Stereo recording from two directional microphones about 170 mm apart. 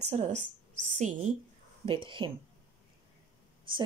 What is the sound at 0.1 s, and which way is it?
Speech, 45° right (ahead or behind).